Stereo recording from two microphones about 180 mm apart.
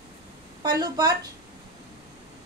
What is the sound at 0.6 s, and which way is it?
Speech, 20° right (ahead or behind).